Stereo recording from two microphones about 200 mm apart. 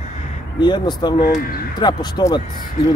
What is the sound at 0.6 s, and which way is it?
Speech, 20° left (ahead or behind).